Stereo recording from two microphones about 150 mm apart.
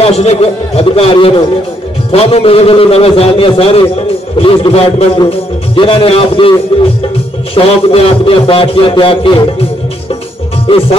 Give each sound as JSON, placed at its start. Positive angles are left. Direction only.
{"t": 0.0, "sound": "a man's voice", "side_deg": 45}
{"t": 7.5, "sound": "a man's voice", "side_deg": 40}